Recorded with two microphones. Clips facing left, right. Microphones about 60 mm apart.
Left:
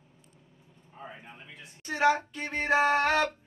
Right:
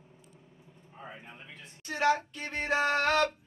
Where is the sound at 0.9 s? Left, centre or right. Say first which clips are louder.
Left 1 dB; centre.